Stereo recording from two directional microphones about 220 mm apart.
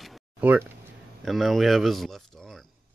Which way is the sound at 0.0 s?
5° right (ahead or behind).